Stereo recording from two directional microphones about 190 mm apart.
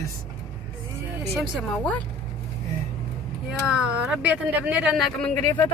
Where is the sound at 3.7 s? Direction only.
5° right (ahead or behind).